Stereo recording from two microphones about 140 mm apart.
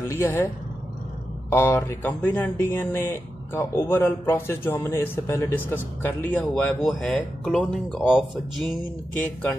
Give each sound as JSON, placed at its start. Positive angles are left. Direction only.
{"t": 0.0, "sound": "speech", "side_deg": 15}
{"t": 1.5, "sound": "speech", "side_deg": 15}